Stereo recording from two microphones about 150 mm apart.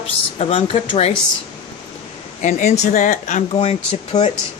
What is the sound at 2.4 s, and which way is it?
Speech, 55° left (ahead or behind).